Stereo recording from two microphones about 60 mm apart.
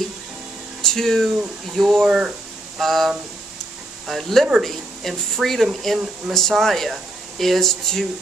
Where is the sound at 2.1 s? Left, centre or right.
Centre.